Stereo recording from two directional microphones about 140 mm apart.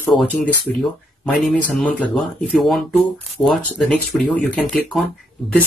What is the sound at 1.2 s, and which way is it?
Speech, 5° left (ahead or behind).